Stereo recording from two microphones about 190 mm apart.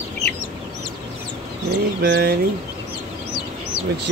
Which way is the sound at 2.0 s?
55° right (ahead or behind).